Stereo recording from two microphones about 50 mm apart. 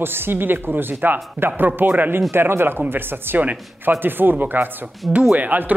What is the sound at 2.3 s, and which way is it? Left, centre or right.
Speech, right.